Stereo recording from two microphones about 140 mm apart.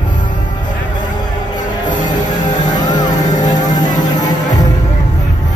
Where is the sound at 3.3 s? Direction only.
60° left (ahead or behind).